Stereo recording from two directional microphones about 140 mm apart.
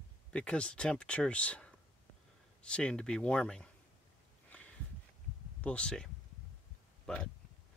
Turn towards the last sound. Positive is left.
turn(degrees=5)  # may be behind; listen again after turning